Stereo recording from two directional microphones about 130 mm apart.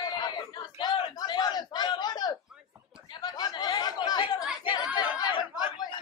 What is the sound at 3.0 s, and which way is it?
Chatter, 35° left (ahead or behind).